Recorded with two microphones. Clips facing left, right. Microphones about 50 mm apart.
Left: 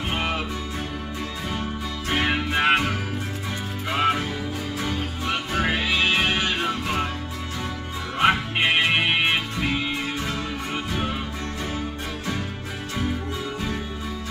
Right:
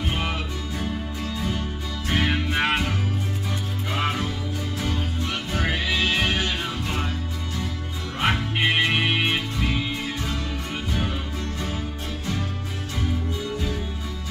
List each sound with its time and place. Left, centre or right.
0.2 s music: centre
2.0 s music: centre
8.2 s music: centre